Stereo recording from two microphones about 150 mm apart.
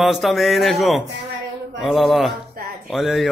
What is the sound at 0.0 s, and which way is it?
A man's voice, centre (ahead or behind).